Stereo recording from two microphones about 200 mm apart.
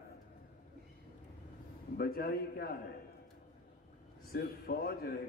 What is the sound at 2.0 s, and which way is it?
Speech, 50° left (ahead or behind).